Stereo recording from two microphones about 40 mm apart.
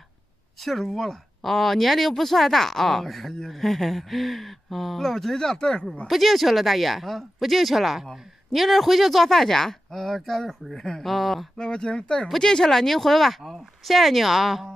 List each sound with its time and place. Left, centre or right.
0.6 s speech: centre
6.0 s speech: centre
11.5 s speech: left; by 14.7 s centre